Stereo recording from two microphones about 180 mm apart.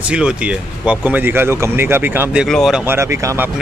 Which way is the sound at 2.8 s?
15° right (ahead or behind).